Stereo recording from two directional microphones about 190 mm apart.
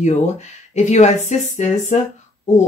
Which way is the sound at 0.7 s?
35° left (ahead or behind).